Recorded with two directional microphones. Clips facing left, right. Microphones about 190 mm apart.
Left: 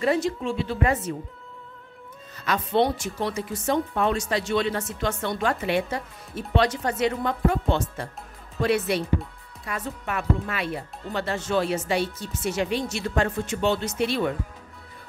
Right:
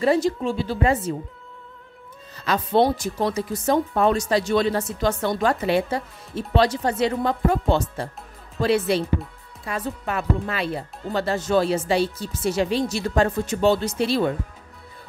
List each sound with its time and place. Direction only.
0.0 s speech: 35° right (ahead or behind)
2.3 s speech: 30° right (ahead or behind)